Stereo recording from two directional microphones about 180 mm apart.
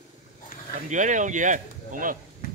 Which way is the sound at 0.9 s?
45° right (ahead or behind).